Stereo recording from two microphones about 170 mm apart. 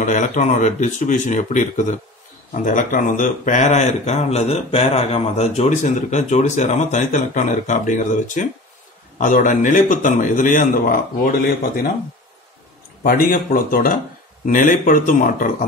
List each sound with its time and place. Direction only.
0.0 s a man's voice: 45° left (ahead or behind)
13.0 s a man's voice: 55° left (ahead or behind)